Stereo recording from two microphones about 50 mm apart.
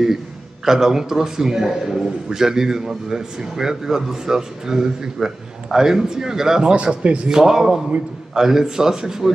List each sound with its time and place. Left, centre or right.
0.7 s a man's voice: centre
6.7 s speech: right
7.2 s a man's voice: centre